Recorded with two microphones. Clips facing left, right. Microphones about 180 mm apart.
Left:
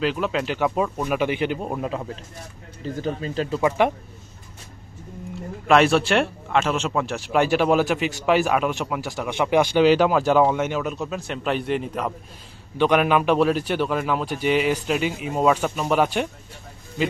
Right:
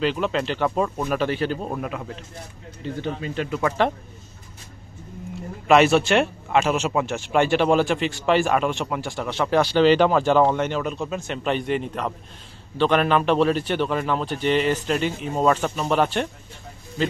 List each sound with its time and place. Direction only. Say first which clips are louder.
0.0 s a man's voice: right 1 dB; 5° left (ahead or behind)
2.8 s speech: left 1 dB; 35° left (ahead or behind)
3.6 s a man's voice: left 2 dB; 10° left (ahead or behind)
5.7 s a man's voice: right 1 dB; centre (ahead or behind)